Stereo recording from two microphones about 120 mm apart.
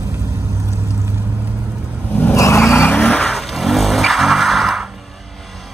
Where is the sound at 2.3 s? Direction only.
25° left (ahead or behind).